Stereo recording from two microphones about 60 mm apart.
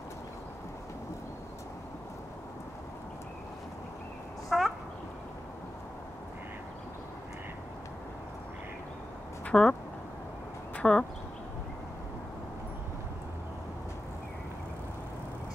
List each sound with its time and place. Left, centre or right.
4.5 s a sound: centre
9.5 s speech: centre
10.8 s speech: centre